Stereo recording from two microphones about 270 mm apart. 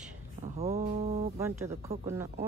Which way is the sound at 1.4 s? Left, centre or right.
Centre.